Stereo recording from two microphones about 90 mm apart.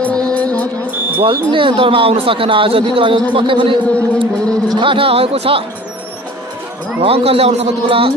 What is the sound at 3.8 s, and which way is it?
Speech, 15° left (ahead or behind).